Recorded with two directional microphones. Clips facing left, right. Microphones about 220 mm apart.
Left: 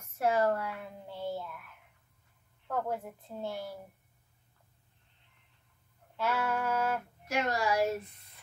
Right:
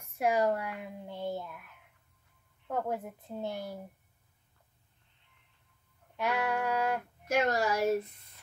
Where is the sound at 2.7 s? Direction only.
20° right (ahead or behind).